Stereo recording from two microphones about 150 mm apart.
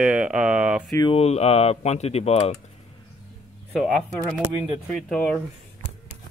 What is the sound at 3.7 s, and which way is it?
Speech, centre (ahead or behind).